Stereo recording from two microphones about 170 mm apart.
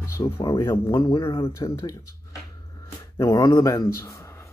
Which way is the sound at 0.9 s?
30° left (ahead or behind).